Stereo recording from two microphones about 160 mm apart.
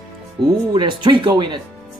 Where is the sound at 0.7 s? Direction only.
30° right (ahead or behind).